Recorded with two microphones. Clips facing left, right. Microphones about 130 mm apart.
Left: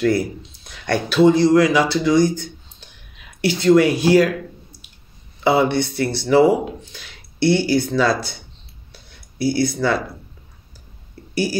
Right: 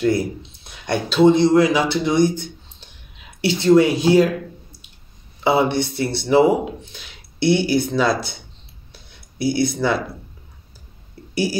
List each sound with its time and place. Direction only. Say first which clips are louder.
0.0 s a man's voice: left 1 dB; 20° right (ahead or behind)
5.5 s a man's voice: left 1 dB; 20° right (ahead or behind)
9.4 s a man's voice: even; 20° right (ahead or behind)